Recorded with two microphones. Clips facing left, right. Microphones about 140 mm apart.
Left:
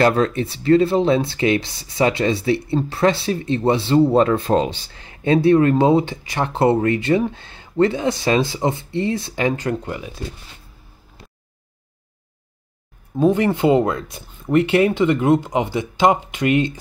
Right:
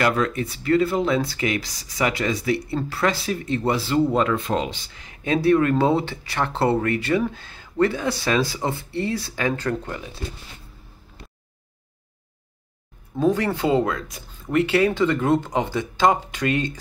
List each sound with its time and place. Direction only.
0.0 s speech: 30° left (ahead or behind); by 10.0 s 15° left (ahead or behind)
13.2 s speech: 20° left (ahead or behind)